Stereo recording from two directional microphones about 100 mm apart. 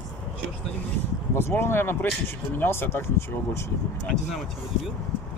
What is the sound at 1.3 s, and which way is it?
Speech, 25° left (ahead or behind).